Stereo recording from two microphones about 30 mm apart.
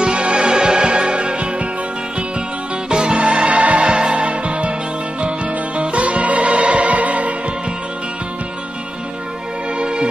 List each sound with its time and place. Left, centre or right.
0.0 s music: right
2.9 s music: right
3.8 s music: right
4.2 s music: right
5.8 s music: right
9.8 s music: right